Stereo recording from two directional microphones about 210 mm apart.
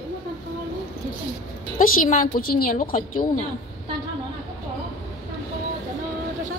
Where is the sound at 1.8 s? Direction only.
40° left (ahead or behind).